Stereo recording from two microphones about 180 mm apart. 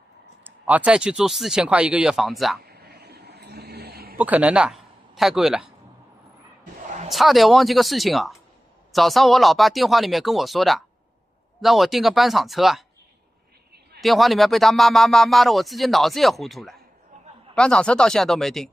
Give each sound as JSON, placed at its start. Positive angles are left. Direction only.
{"t": 0.4, "sound": "speech", "side_deg": -10}
{"t": 2.6, "sound": "a sound", "side_deg": -60}
{"t": 4.2, "sound": "a man's voice", "side_deg": -10}
{"t": 7.1, "sound": "speech", "side_deg": 0}
{"t": 14.0, "sound": "speech", "side_deg": 0}